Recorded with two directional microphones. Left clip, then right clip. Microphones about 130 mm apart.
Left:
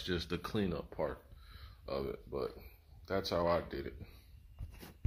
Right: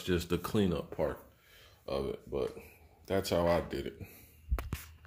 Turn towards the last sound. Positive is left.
turn(degrees=-5)  # may be behind; listen again after turning